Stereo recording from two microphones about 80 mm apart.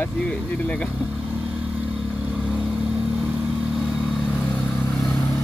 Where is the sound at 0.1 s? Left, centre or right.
Centre.